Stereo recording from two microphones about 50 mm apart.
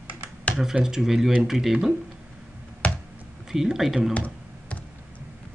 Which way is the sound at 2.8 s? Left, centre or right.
Left.